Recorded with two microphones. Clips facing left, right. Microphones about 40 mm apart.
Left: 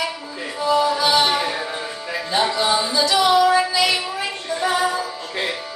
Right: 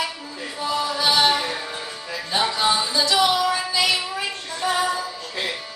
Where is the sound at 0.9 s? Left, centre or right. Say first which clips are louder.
Left 1 dB; centre.